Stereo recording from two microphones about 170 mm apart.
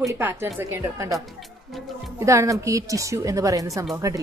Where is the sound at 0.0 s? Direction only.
15° right (ahead or behind).